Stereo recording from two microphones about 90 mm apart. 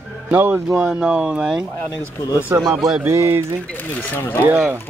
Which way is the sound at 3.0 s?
30° right (ahead or behind).